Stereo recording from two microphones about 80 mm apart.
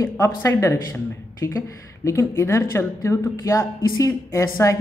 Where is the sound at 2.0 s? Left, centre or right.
Left.